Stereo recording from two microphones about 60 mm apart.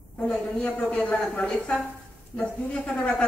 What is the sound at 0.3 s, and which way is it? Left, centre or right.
A woman's voice, centre.